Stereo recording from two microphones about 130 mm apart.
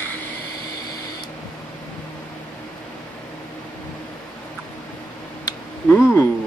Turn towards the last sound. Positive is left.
turn(degrees=20)  # may be behind; listen again after turning